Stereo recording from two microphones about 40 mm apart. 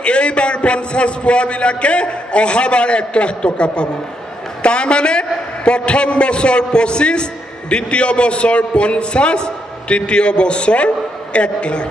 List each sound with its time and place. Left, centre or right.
0.0 s a man's voice: left